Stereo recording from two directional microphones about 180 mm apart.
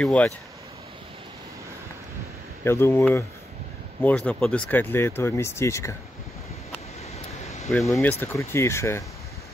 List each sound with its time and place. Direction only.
0.0 s speech: 5° left (ahead or behind)
2.6 s speech: 15° left (ahead or behind)
7.4 s a sound: 35° left (ahead or behind)
7.9 s speech: 10° left (ahead or behind)